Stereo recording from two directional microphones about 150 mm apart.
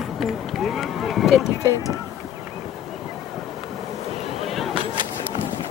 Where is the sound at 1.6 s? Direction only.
20° left (ahead or behind).